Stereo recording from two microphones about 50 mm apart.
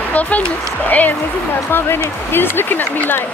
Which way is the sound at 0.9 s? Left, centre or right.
Left.